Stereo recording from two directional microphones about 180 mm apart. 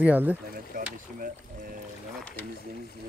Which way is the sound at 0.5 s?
50° right (ahead or behind).